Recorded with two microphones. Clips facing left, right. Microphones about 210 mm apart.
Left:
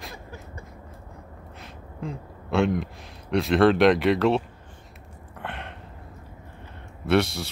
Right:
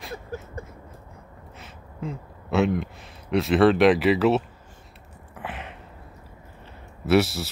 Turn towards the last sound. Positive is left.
turn(degrees=-5)  # may be behind; listen again after turning